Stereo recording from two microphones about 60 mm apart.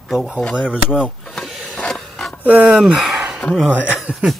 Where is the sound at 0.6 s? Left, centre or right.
Centre.